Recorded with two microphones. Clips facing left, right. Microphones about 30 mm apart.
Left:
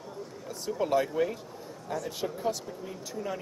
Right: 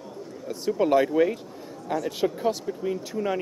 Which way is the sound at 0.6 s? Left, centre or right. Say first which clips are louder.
Right 6 dB; right.